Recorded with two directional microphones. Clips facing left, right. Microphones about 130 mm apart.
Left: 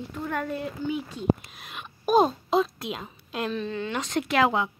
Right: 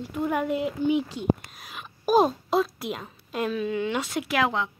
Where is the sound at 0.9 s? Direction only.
90° right.